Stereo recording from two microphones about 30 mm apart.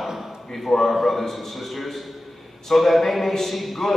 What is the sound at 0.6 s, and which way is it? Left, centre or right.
A man's voice, centre.